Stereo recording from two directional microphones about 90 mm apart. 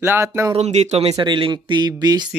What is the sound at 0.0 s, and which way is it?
Speech, 25° right (ahead or behind).